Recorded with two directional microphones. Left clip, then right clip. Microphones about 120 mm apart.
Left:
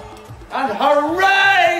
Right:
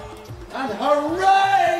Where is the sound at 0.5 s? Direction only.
20° left (ahead or behind).